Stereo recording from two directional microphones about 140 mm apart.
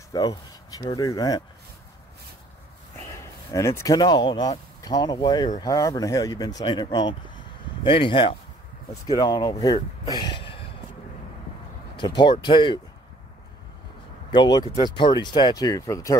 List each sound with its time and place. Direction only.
0.1 s speech: 30° left (ahead or behind)
3.5 s speech: 20° left (ahead or behind); by 8.4 s 40° left (ahead or behind)
9.0 s speech: 25° left (ahead or behind)
12.0 s speech: 30° left (ahead or behind)
14.3 s speech: 35° left (ahead or behind)